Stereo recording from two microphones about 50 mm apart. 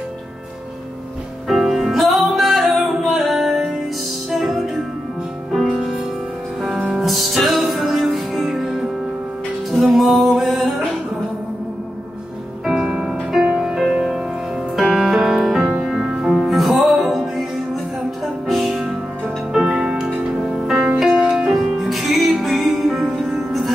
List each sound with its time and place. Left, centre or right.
1.5 s music: centre
7.0 s music: centre
9.9 s music: centre
12.6 s music: centre
18.5 s music: centre
21.1 s music: right
21.5 s music: centre